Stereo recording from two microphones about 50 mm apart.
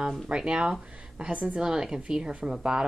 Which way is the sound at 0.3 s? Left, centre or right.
Centre.